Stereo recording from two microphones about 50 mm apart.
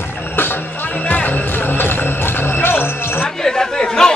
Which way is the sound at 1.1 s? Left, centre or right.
Left.